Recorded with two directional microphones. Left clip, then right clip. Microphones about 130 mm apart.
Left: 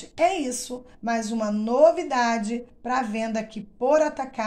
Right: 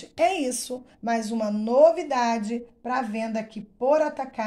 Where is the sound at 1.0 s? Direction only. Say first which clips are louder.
Even; 25° right (ahead or behind).